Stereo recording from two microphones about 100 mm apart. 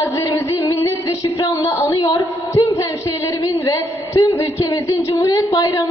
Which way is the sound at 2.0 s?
35° left (ahead or behind).